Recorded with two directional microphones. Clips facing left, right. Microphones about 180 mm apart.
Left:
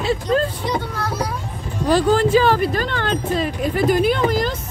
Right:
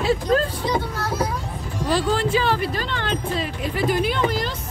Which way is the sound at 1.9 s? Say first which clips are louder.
Left 6 dB; 45° left (ahead or behind).